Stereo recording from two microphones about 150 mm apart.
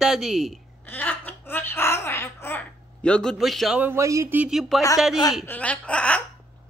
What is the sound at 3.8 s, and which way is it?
Speech, 20° right (ahead or behind).